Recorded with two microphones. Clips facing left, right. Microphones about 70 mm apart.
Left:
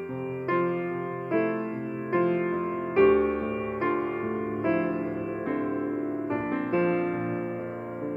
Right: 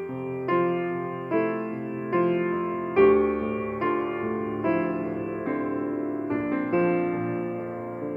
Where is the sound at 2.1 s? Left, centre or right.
Right.